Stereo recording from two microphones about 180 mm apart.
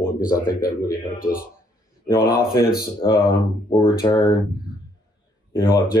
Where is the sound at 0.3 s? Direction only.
20° left (ahead or behind).